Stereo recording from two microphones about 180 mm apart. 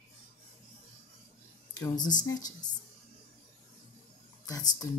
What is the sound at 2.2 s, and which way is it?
Speech, 20° left (ahead or behind).